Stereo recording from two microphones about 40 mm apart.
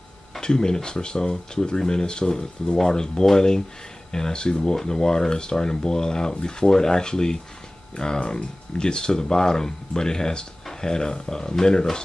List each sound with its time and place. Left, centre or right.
0.4 s speech: centre